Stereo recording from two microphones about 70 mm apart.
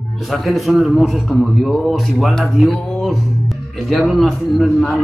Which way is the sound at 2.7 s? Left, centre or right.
Centre.